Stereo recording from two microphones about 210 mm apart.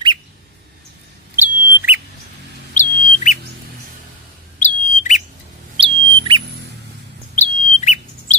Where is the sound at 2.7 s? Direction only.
35° left (ahead or behind).